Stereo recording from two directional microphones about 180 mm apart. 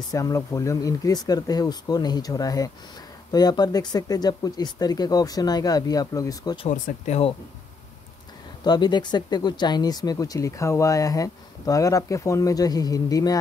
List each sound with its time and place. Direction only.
0.1 s speech: 20° left (ahead or behind)
6.7 s speech: 35° left (ahead or behind)
8.6 s speech: 25° left (ahead or behind)